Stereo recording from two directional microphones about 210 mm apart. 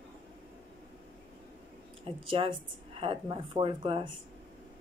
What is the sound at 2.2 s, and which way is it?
Speech, 25° right (ahead or behind).